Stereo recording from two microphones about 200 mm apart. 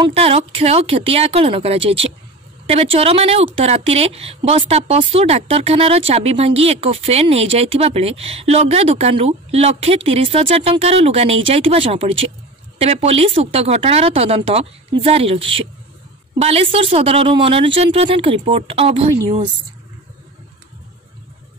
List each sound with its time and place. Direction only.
0.0 s a woman's voice: 30° right (ahead or behind)